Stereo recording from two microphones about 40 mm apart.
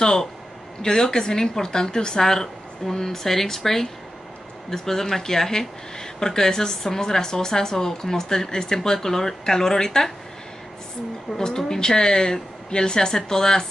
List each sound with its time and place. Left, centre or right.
0.0 s speech: centre
11.3 s speech: centre